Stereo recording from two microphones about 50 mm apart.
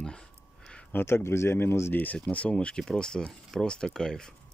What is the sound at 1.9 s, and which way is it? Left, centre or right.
Speech, left.